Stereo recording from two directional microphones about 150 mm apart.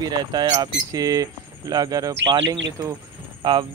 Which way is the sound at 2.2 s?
35° right (ahead or behind).